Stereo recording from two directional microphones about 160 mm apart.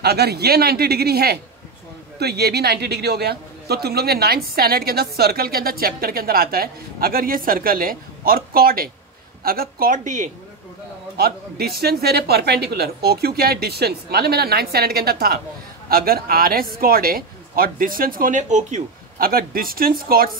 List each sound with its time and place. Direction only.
0.0 s a man's voice: 90° right; by 10.3 s 50° right (ahead or behind)
11.1 s a man's voice: 75° right (ahead or behind)